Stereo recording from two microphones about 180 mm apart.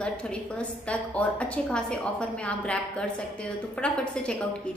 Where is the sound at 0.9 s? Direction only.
5° left (ahead or behind).